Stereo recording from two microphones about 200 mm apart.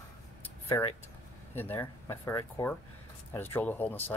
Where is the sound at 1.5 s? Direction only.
10° left (ahead or behind).